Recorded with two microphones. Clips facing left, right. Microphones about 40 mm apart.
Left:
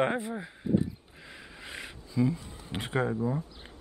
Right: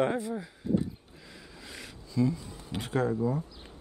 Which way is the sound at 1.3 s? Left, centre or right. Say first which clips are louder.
Left 3 dB; left.